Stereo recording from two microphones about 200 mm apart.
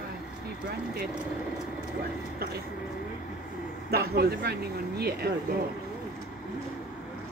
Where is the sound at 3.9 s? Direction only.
50° right (ahead or behind).